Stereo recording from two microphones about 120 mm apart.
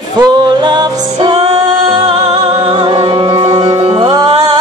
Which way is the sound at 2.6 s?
40° right (ahead or behind).